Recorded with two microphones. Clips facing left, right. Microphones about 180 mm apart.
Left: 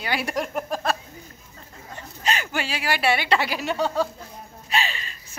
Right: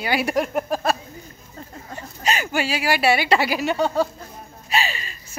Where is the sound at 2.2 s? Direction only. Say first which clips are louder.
Right 4 dB; 10° right (ahead or behind).